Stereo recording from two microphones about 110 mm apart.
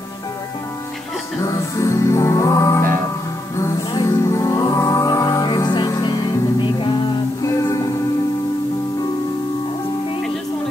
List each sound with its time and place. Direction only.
1.4 s music: 30° left (ahead or behind)
7.4 s music: 30° left (ahead or behind)